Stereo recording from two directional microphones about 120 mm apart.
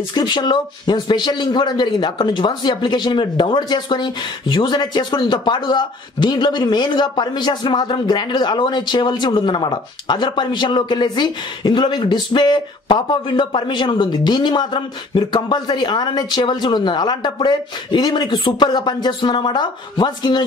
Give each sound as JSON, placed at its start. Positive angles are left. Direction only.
{"t": 0.1, "sound": "a man's voice", "side_deg": 40}